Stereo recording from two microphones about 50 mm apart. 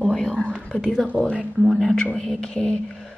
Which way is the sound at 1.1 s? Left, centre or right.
Right.